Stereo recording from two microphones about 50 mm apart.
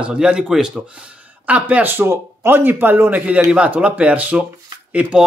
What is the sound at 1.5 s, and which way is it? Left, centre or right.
Speech, right.